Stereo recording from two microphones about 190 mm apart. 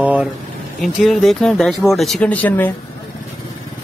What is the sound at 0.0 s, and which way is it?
Speech, 5° right (ahead or behind).